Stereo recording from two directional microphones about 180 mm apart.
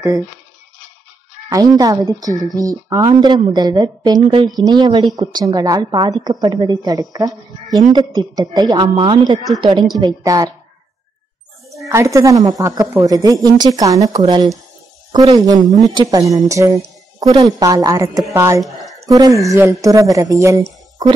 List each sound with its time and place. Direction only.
1.5 s a woman's voice: 20° right (ahead or behind)
11.9 s a woman's voice: 15° right (ahead or behind)